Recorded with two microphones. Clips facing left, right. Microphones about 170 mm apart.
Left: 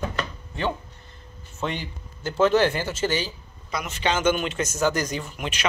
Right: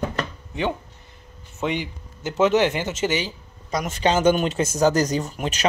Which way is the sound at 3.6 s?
40° right (ahead or behind).